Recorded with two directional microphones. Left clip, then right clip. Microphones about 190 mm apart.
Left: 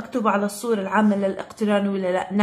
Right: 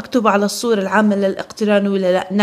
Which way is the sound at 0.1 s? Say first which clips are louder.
Right 7 dB; 40° right (ahead or behind).